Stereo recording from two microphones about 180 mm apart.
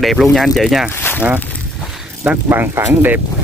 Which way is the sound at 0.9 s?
10° left (ahead or behind).